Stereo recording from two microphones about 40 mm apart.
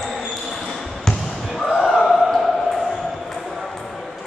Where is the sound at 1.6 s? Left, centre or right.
Centre.